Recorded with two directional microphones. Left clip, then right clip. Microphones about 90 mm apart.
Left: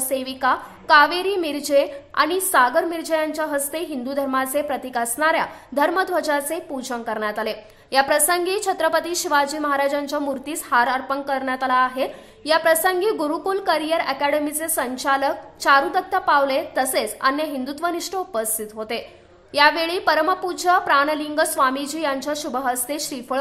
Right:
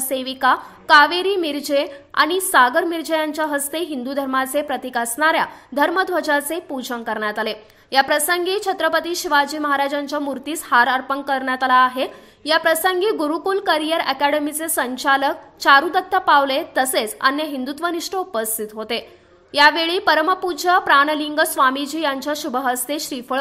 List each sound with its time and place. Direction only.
0.1 s a woman's voice: 30° right (ahead or behind)
5.8 s a woman's voice: 20° right (ahead or behind)
12.4 s a woman's voice: 20° right (ahead or behind)